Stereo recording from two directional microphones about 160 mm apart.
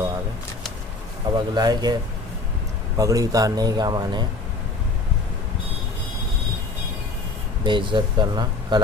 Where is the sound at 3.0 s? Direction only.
20° right (ahead or behind).